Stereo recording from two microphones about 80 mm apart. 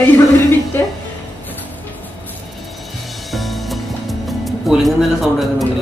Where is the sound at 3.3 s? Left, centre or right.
Centre.